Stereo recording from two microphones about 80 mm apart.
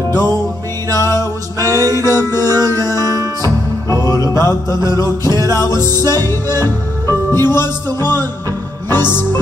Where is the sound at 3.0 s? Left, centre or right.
Right.